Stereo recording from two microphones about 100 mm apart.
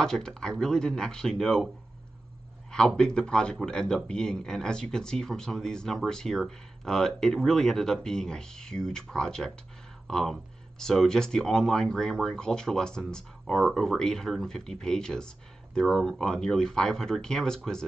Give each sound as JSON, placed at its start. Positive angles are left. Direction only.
{"t": 0.0, "sound": "speech", "side_deg": 5}
{"t": 2.7, "sound": "speech", "side_deg": 10}